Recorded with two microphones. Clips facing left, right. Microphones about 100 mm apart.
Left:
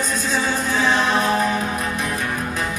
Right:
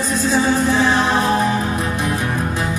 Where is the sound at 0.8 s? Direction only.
25° right (ahead or behind).